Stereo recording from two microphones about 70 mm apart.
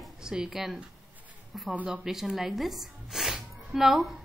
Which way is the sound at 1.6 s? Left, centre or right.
Right.